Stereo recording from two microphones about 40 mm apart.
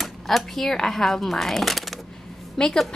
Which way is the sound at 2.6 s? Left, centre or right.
Centre.